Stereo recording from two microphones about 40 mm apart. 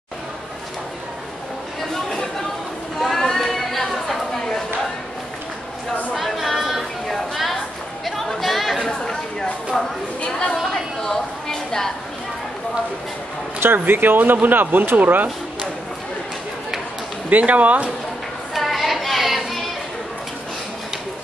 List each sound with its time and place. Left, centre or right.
3.0 s a sound: centre
4.3 s chatter: centre
6.1 s chatter: centre
7.1 s a sound: centre
8.0 s chatter: centre
8.8 s chatter: centre
9.8 s a woman's voice: centre
11.0 s a sound: centre
13.8 s speech: right
15.0 s speech: right
17.3 s speech: right
18.5 s child singing: centre